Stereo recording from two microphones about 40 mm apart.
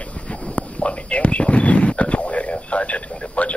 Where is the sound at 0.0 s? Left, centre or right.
Left.